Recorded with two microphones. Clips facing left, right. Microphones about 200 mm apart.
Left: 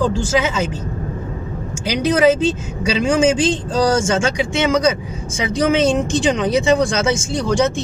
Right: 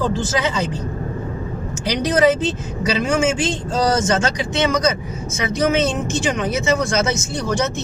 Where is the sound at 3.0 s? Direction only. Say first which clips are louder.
Left 5 dB; 15° left (ahead or behind).